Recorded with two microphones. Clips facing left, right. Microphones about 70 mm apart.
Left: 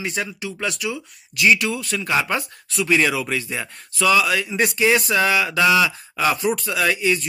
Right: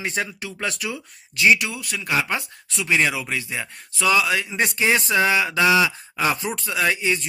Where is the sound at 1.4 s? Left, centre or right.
Centre.